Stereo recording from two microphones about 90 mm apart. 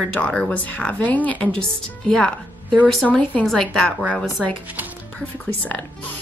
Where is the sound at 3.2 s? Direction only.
15° left (ahead or behind).